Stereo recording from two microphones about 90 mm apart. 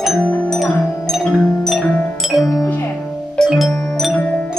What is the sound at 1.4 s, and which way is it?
Music, 5° left (ahead or behind).